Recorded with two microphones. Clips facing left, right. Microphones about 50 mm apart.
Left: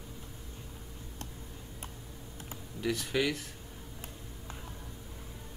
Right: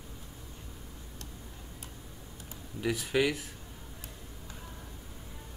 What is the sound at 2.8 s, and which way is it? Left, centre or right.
Speech, centre.